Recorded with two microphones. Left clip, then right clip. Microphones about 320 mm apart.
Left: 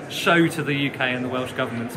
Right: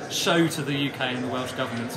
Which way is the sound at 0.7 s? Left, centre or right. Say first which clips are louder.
Left 4 dB; centre.